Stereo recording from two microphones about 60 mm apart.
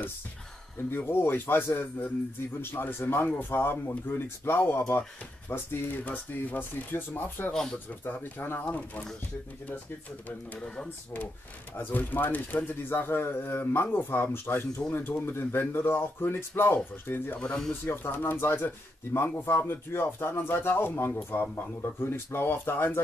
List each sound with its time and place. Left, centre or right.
0.9 s speech: left
10.2 s speech: left
11.7 s speech: left